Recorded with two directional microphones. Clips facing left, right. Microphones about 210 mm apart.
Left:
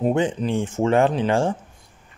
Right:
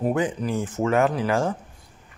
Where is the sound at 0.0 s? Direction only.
25° left (ahead or behind).